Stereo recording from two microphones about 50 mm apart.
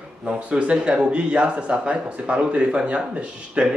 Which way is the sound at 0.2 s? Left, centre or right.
Right.